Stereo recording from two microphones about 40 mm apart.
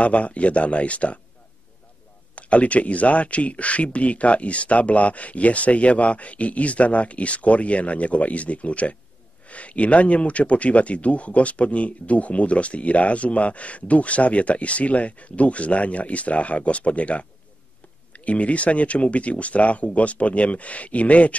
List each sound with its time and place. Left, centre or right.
0.0 s a man's voice: left
2.3 s a man's voice: left